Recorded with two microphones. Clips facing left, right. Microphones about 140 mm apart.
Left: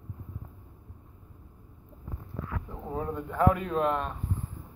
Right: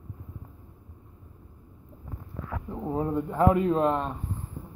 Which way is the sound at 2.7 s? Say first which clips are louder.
Right 7 dB; 20° right (ahead or behind).